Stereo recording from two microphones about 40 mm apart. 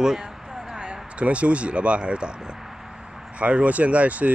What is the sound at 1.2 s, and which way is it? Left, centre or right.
Speech, right.